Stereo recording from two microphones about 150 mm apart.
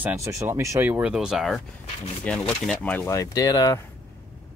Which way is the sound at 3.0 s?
20° left (ahead or behind).